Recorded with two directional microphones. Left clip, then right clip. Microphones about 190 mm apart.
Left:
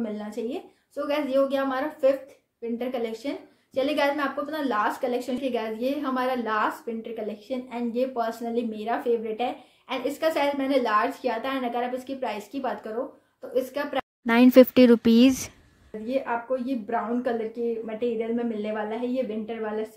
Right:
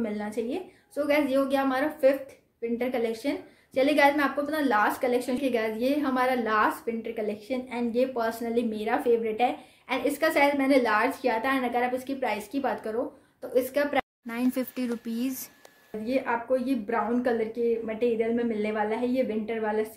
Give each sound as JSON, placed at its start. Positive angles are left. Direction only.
{"t": 0.0, "sound": "a woman's voice", "side_deg": -10}
{"t": 14.2, "sound": "speech", "side_deg": 40}
{"t": 16.1, "sound": "a woman's voice", "side_deg": -10}